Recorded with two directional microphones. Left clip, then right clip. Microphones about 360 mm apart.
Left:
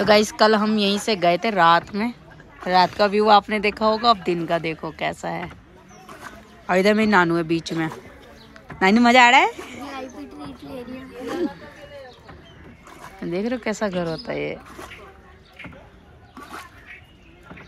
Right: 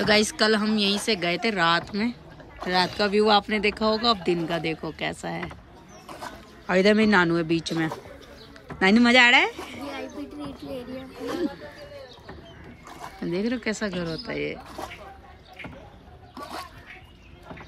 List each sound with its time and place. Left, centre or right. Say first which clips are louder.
0.0 s speech: left 5 dB; centre
6.6 s speech: left 2 dB; centre
13.2 s speech: left 3 dB; centre